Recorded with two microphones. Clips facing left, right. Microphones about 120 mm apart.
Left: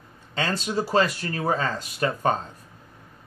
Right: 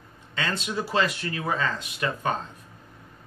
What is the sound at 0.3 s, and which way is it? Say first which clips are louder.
Speech: left 3 dB; 35° left (ahead or behind).